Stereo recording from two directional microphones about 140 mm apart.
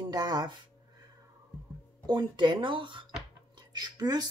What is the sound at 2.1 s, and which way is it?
Speech, 30° right (ahead or behind).